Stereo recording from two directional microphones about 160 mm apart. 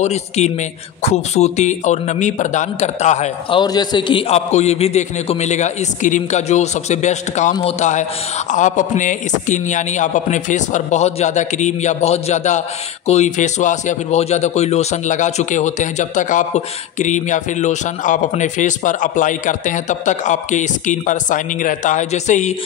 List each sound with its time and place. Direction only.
0.0 s a man's voice: 45° left (ahead or behind)
3.4 s a man's voice: 30° left (ahead or behind)
4.3 s a man's voice: 45° left (ahead or behind)